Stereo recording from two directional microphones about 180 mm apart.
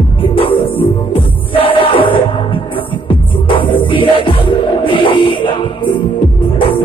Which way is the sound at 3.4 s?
30° left (ahead or behind).